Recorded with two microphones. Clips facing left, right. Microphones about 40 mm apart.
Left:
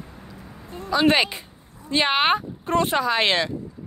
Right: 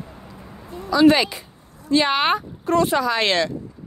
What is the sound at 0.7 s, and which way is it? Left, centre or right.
A woman's voice, left.